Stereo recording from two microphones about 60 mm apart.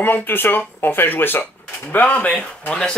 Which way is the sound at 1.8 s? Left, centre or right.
Centre.